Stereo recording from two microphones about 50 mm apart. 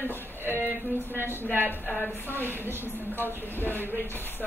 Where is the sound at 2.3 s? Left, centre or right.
Right.